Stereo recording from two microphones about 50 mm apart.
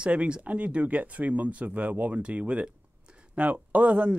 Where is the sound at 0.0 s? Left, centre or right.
Right.